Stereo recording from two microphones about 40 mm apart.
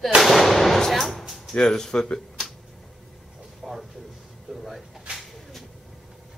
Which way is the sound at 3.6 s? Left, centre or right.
Centre.